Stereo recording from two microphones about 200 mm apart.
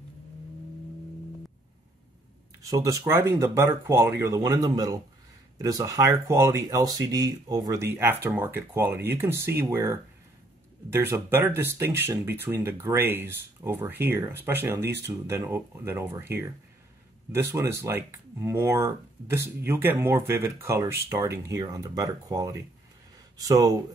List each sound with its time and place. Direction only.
2.6 s speech: 15° right (ahead or behind)